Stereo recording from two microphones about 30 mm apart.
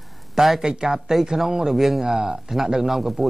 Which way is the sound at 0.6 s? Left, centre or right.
Right.